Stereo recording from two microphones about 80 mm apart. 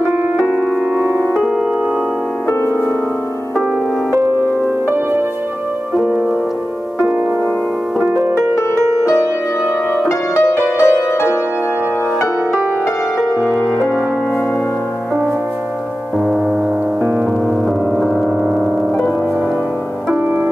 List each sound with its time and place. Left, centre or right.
0.9 s music: right
5.9 s music: centre
10.0 s music: left
17.9 s gong: centre